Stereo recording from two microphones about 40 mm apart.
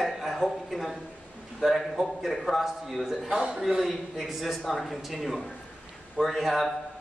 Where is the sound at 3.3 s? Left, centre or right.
Centre.